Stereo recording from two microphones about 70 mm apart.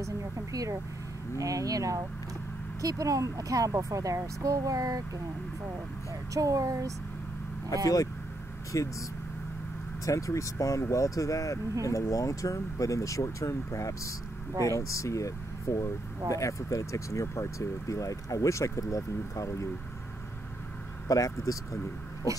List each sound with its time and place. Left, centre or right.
0.0 s speech: right
6.3 s speech: right
8.7 s speech: left
10.0 s speech: left
21.1 s speech: left